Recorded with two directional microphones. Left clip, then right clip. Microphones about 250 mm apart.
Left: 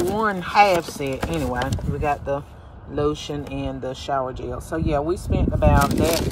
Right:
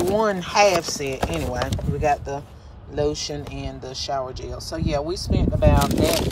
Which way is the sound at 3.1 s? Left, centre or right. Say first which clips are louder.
Left 1 dB; right.